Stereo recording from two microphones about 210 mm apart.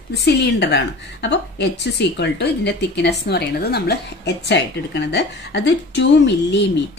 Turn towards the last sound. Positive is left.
turn(degrees=55)  # may be behind; listen again after turning